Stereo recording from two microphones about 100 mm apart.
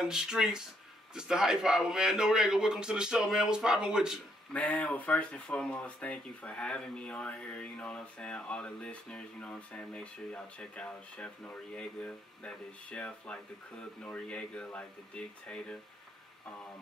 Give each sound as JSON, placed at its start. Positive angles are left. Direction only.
{"t": 0.0, "sound": "a man's voice", "side_deg": -5}
{"t": 4.6, "sound": "speech", "side_deg": 15}